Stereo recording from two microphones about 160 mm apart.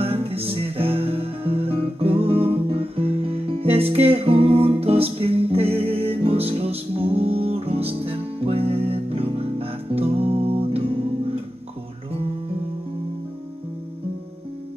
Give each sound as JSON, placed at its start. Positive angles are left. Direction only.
{"t": 0.2, "sound": "music", "side_deg": -35}